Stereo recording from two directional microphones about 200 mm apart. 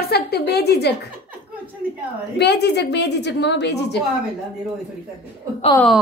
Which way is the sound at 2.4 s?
55° left (ahead or behind).